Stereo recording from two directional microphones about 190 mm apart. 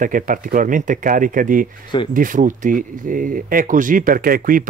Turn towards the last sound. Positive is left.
turn(degrees=-50)  # may be behind; listen again after turning